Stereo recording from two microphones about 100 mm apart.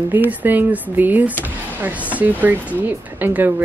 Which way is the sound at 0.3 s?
15° right (ahead or behind).